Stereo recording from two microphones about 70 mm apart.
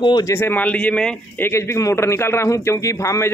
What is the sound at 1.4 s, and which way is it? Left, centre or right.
A man's voice, left.